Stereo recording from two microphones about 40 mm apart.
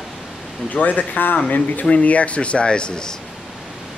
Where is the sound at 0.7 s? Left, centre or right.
Left.